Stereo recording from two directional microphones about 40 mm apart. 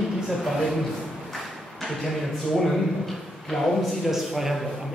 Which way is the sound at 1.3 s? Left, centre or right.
Centre.